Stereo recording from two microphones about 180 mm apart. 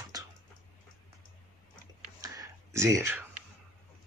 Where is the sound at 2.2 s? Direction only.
15° right (ahead or behind).